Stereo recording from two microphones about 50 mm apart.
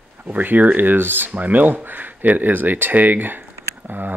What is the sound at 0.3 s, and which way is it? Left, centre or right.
Speech, right.